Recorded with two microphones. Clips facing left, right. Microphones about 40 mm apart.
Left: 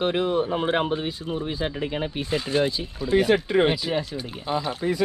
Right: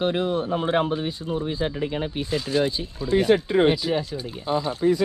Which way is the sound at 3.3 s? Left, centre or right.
Left.